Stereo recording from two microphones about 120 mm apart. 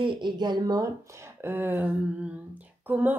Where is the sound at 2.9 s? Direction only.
15° right (ahead or behind).